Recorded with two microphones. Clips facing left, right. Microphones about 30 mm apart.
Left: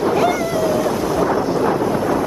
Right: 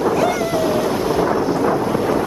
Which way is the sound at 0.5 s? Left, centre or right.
Right.